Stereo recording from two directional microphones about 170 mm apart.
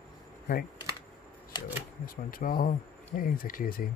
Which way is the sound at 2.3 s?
55° left (ahead or behind).